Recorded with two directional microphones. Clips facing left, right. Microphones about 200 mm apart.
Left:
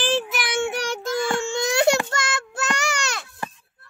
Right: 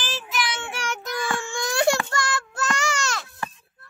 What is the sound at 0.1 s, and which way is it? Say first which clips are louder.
Child singing: left 6 dB; 55° left (ahead or behind).